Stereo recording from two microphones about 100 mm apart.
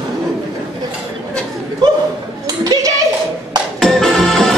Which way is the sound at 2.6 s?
35° right (ahead or behind).